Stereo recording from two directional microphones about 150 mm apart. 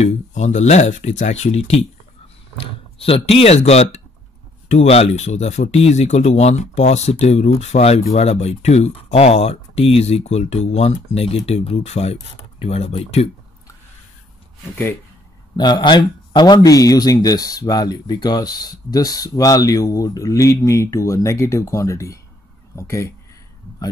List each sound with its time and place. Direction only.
0.0 s speech: 50° left (ahead or behind)
2.5 s a sound: 40° left (ahead or behind)
3.3 s speech: 40° left (ahead or behind)
15.5 s speech: 30° left (ahead or behind)